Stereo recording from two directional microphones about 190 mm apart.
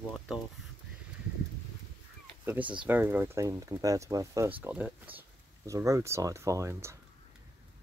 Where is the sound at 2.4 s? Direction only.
10° right (ahead or behind).